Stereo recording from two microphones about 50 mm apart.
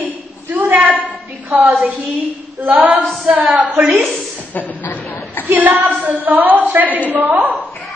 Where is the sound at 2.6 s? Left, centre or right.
Right.